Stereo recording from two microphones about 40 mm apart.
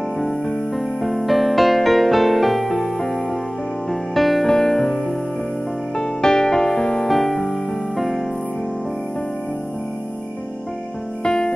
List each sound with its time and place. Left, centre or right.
0.2 s music: centre
0.7 s music: centre
11.2 s music: centre